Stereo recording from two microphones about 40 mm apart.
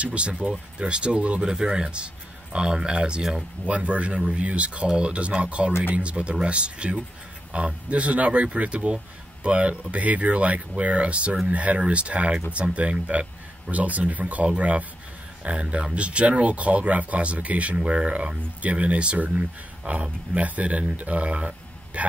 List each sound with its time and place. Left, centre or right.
0.0 s speech: right
1.4 s speech: centre